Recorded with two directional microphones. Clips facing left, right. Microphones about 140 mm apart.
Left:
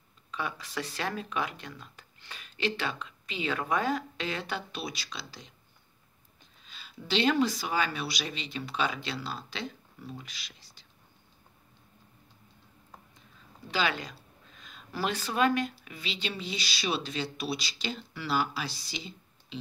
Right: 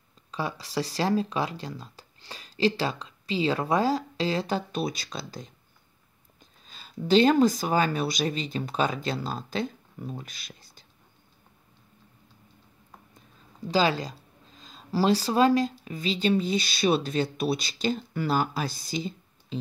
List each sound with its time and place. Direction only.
0.3 s speech: 35° right (ahead or behind)
13.7 s speech: 35° right (ahead or behind)